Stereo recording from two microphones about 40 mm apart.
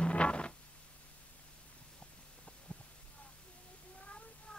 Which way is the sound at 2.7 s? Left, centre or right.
Left.